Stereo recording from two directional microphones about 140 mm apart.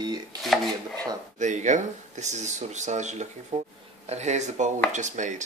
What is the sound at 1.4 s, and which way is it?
Speech, 60° right (ahead or behind).